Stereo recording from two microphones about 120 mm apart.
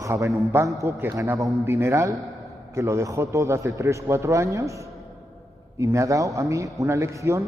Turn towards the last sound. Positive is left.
turn(degrees=-25)  # may be behind; listen again after turning